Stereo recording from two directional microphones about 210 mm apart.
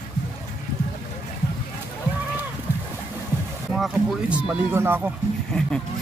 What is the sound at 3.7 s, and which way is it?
Speech, 5° right (ahead or behind).